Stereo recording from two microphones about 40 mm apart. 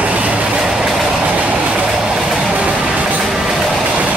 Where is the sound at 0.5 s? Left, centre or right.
Centre.